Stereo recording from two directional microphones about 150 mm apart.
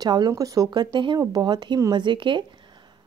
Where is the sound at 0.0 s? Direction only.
25° right (ahead or behind).